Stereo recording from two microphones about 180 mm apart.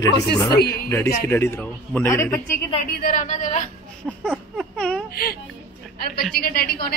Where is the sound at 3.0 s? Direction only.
45° left (ahead or behind).